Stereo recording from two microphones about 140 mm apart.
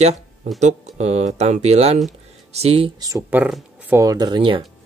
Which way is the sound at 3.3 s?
10° right (ahead or behind).